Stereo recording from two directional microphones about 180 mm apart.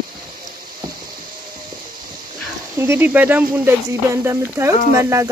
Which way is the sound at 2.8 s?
10° right (ahead or behind).